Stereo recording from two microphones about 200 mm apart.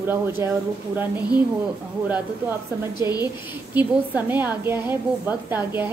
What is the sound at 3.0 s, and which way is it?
Speech, 20° left (ahead or behind).